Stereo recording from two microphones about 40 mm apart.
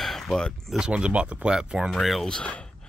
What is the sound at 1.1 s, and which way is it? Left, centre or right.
Speech, right.